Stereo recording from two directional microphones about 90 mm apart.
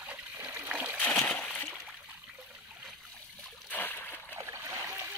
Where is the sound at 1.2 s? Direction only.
15° left (ahead or behind).